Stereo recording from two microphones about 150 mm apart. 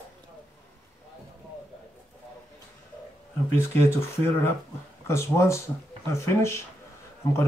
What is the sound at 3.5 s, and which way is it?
Speech, 15° left (ahead or behind).